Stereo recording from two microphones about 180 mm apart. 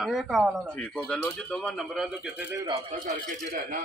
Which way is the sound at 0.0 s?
Centre (ahead or behind).